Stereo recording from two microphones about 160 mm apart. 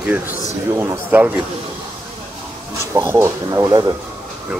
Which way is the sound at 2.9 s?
15° right (ahead or behind).